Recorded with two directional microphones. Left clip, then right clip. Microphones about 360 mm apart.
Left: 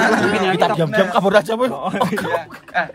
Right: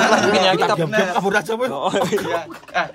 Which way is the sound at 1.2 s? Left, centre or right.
Centre.